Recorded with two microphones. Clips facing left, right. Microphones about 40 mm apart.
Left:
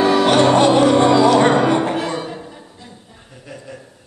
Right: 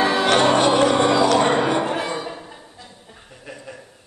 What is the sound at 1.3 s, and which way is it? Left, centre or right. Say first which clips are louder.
Music: left 4 dB; left.